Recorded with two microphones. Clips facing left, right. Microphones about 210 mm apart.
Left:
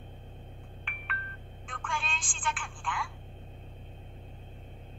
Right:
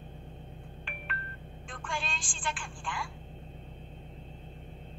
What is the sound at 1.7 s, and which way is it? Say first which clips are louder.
Speech: even; centre (ahead or behind).